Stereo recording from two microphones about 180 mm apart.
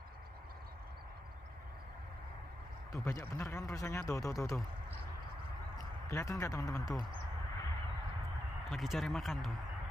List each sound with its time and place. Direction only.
2.9 s speech: 15° left (ahead or behind)
6.0 s speech: 15° left (ahead or behind)
8.6 s speech: centre (ahead or behind)